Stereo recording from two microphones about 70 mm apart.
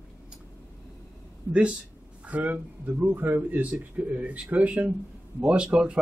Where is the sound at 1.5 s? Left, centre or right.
Centre.